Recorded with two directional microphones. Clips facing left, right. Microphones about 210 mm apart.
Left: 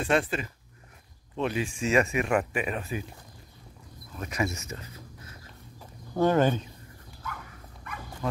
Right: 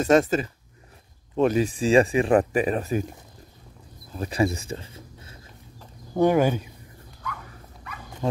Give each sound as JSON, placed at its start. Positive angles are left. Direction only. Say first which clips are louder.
{"t": 0.0, "sound": "speech", "louder": "right 7 dB", "side_deg": -40}
{"t": 4.1, "sound": "speech", "louder": "right 7 dB", "side_deg": -30}
{"t": 6.1, "sound": "speech", "louder": "right 3 dB", "side_deg": -15}
{"t": 8.2, "sound": "a sound", "louder": "right 5 dB", "side_deg": -25}